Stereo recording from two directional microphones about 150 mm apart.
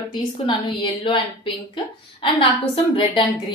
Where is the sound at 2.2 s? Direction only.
35° left (ahead or behind).